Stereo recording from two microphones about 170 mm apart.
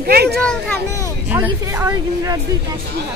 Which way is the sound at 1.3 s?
15° right (ahead or behind).